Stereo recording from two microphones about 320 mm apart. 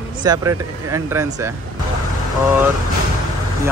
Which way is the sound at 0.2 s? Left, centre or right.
Centre.